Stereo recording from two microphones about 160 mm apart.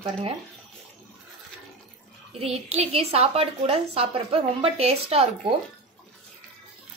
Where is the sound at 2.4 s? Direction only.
40° right (ahead or behind).